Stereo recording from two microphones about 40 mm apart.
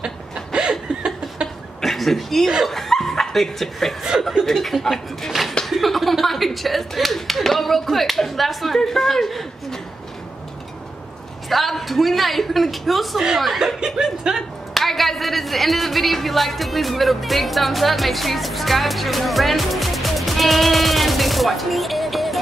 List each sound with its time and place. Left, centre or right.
0.0 s a sound: right
1.8 s speech: centre
2.7 s chuckle: centre
4.1 s speech: centre
4.5 s speech: centre
11.4 s speech: centre
14.3 s speech: centre